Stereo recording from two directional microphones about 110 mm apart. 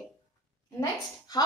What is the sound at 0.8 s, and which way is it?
Speech, 35° left (ahead or behind).